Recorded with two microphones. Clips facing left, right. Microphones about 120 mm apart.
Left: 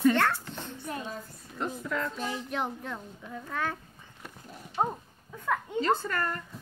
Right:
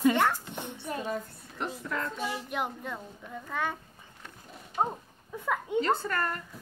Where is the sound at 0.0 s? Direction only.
15° right (ahead or behind).